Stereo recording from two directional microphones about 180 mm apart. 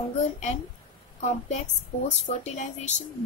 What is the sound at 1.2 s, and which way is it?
A woman's voice, 40° left (ahead or behind).